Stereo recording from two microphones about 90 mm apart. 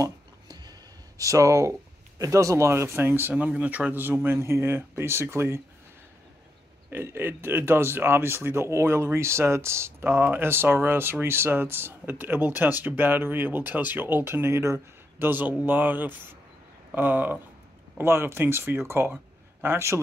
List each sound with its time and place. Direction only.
0.0 s speech: 45° right (ahead or behind); by 5.6 s 30° right (ahead or behind)
6.9 s speech: 25° right (ahead or behind)